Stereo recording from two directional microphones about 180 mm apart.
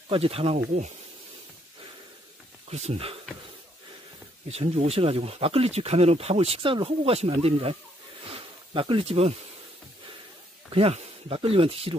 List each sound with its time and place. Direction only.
0.1 s speech: 30° right (ahead or behind)
2.7 s speech: 35° right (ahead or behind)
4.5 s speech: 35° right (ahead or behind)
8.3 s a sound: 30° right (ahead or behind)
10.7 s speech: 30° right (ahead or behind)